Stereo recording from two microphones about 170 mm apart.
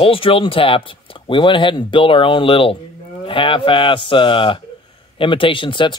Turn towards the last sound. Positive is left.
turn(degrees=30)  # may be behind; listen again after turning